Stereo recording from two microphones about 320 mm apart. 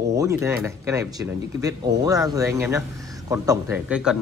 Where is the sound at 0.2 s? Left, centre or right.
Centre.